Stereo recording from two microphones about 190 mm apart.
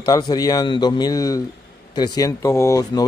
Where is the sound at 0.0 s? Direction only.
20° left (ahead or behind).